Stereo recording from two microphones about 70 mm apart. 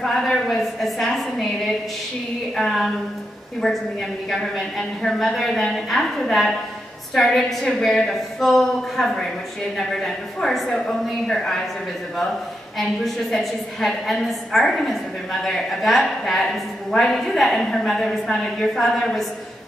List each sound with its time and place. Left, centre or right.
0.0 s a woman's voice: centre
4.3 s a woman's voice: centre
12.7 s a woman's voice: centre